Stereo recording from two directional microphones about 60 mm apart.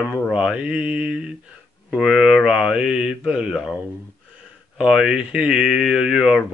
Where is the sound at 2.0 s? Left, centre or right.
Centre.